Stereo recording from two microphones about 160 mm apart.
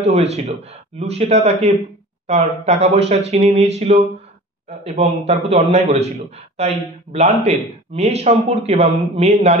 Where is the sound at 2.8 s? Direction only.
40° right (ahead or behind).